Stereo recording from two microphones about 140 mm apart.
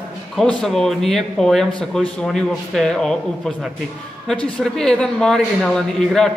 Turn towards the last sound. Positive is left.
turn(degrees=5)  # may be behind; listen again after turning